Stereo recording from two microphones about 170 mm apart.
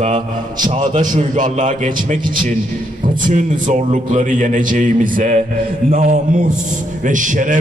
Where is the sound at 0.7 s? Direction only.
45° right (ahead or behind).